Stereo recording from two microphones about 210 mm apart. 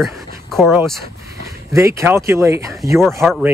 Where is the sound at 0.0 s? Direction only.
Centre (ahead or behind).